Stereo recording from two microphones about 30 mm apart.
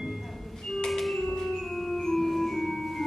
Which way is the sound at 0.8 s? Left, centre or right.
Centre.